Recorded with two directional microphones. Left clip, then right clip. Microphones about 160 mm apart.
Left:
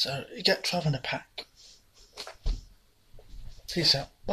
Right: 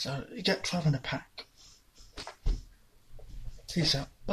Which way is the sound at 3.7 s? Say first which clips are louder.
Left 5 dB; 10° right (ahead or behind).